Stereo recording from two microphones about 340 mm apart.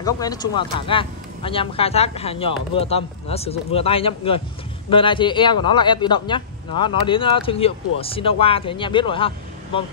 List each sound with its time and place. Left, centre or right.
0.0 s speech: centre